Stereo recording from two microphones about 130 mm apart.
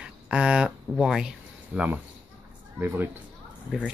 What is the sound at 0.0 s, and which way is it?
Speech, 10° right (ahead or behind).